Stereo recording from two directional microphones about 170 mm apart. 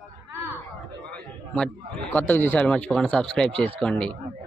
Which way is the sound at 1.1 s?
5° left (ahead or behind).